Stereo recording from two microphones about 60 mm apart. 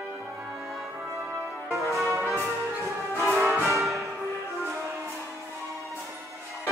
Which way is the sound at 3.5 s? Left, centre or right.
Right.